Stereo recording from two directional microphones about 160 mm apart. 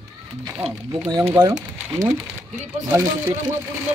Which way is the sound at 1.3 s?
20° right (ahead or behind).